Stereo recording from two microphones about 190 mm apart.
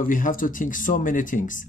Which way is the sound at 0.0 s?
45° left (ahead or behind).